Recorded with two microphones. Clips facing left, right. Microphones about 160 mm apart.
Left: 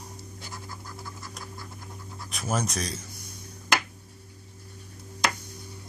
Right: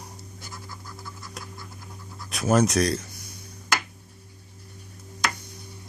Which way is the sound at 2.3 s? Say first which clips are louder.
Right 9 dB; 70° right (ahead or behind).